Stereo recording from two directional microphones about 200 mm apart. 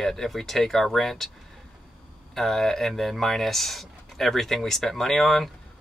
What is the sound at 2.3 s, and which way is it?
Speech, centre (ahead or behind).